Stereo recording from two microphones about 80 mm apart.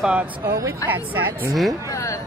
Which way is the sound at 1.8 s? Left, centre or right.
Left.